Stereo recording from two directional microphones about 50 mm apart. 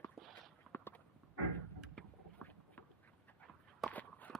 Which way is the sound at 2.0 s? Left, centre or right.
Centre.